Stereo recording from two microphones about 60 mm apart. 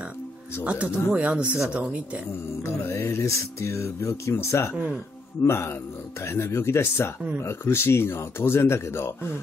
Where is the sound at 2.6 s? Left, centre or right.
Left.